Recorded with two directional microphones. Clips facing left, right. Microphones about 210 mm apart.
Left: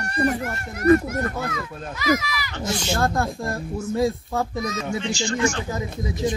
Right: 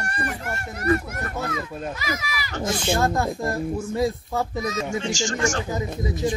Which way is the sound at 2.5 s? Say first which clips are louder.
Right 3 dB; 45° right (ahead or behind).